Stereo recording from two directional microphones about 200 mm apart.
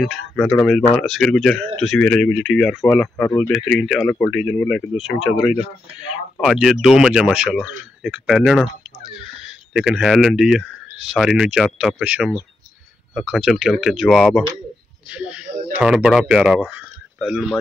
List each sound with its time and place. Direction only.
0.0 s speech: centre (ahead or behind)
9.8 s speech: 5° right (ahead or behind)